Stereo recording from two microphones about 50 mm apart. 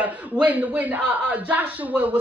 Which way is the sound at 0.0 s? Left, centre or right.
Right.